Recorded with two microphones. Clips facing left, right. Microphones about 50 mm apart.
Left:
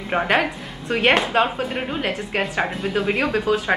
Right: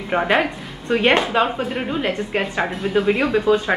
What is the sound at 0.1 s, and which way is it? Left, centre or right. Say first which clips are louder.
A woman's voice: right 1 dB; centre.